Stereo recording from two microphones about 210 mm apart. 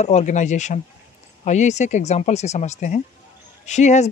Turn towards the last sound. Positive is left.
turn(degrees=35)  # may be behind; listen again after turning